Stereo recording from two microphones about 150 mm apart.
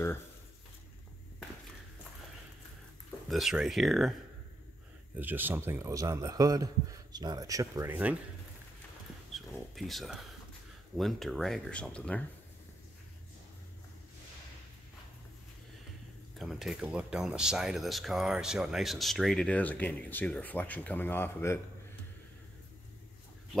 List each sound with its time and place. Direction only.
3.3 s speech: centre (ahead or behind)
5.1 s a man's voice: 10° right (ahead or behind)
9.3 s speech: centre (ahead or behind)
16.3 s speech: centre (ahead or behind); by 21.5 s 15° left (ahead or behind)